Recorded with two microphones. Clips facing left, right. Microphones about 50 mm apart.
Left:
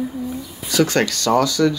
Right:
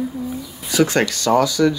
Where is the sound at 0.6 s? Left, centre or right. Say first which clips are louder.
Right 1 dB; centre.